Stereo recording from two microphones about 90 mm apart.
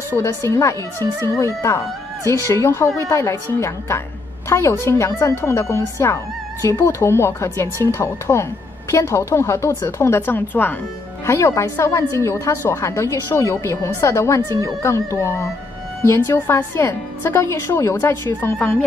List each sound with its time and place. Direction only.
0.2 s a woman's voice: 35° left (ahead or behind)
11.2 s a woman's voice: 30° left (ahead or behind)